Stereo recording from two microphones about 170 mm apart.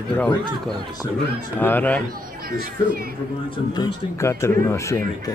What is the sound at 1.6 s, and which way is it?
Speech, 10° left (ahead or behind).